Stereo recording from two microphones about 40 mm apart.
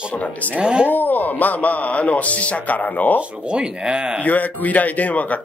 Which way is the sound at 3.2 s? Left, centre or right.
Right.